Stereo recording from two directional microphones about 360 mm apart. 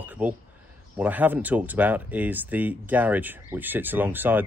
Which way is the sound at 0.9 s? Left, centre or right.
Centre.